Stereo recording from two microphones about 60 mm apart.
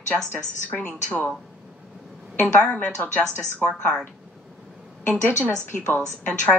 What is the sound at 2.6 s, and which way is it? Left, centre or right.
Speech, centre.